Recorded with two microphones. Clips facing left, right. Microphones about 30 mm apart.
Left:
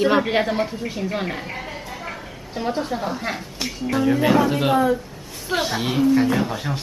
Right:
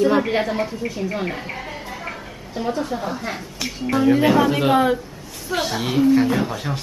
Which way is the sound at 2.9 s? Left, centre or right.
Centre.